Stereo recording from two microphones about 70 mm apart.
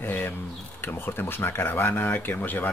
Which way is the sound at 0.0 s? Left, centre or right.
Left.